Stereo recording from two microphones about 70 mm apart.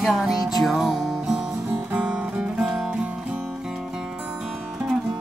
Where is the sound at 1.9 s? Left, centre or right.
Centre.